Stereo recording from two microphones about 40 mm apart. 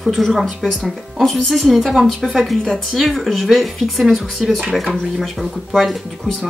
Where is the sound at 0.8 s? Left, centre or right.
Centre.